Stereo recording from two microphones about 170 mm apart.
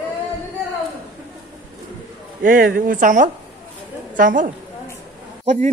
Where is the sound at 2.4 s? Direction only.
55° right (ahead or behind).